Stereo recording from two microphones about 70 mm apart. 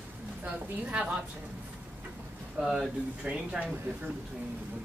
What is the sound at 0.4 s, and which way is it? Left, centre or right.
Speech, centre.